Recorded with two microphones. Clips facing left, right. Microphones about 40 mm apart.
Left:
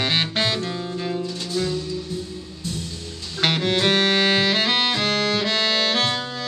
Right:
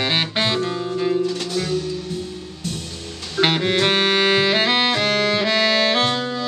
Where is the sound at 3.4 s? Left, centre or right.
Centre.